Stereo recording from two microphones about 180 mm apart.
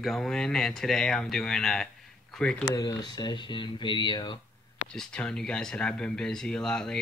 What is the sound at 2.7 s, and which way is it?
Speech, 20° left (ahead or behind).